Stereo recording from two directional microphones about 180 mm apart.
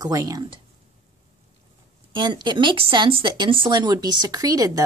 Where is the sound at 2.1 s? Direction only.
25° right (ahead or behind).